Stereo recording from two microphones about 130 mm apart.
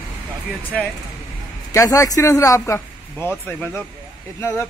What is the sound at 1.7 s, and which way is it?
Speech, 25° left (ahead or behind).